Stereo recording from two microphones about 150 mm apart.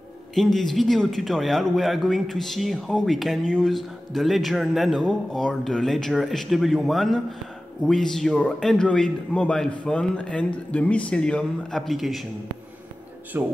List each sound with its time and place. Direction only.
0.3 s a man's voice: centre (ahead or behind)
13.3 s speech: 15° right (ahead or behind)